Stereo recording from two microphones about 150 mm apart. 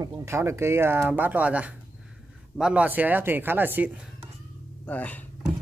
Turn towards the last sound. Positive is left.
turn(degrees=10)  # may be behind; listen again after turning